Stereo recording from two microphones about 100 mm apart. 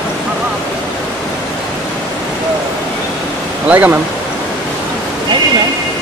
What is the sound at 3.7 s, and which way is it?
Speech, 15° right (ahead or behind).